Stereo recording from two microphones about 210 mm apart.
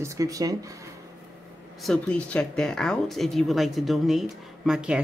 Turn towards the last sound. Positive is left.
turn(degrees=-5)  # may be behind; listen again after turning